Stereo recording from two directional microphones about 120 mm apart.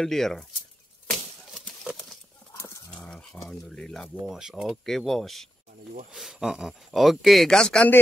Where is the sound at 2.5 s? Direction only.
25° left (ahead or behind).